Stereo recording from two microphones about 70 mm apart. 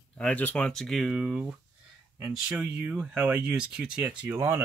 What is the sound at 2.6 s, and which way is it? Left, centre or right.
Speech, centre.